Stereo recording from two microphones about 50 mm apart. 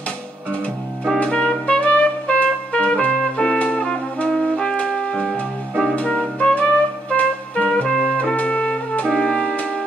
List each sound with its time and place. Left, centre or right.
1.2 s music: left
4.3 s music: centre
4.6 s music: centre
6.5 s music: left